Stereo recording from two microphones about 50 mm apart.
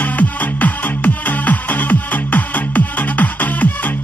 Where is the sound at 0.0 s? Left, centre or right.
Left.